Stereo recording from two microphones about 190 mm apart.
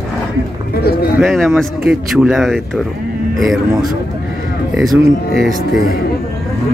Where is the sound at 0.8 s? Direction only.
55° left (ahead or behind).